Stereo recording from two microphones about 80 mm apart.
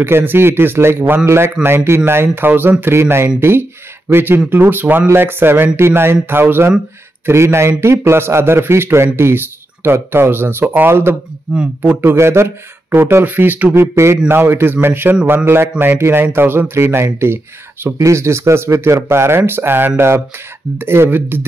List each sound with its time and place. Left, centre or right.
0.0 s speech: right
11.5 s speech: centre
11.8 s speech: right
13.7 s speech: right